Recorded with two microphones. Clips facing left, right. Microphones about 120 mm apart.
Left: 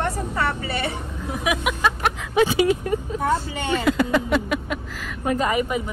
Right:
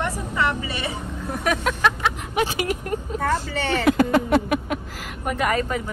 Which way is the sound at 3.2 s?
15° left (ahead or behind).